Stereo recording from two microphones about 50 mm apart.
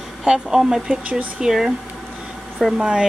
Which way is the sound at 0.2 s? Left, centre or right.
Centre.